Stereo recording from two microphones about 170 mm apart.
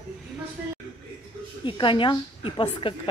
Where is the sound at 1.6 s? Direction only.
30° left (ahead or behind).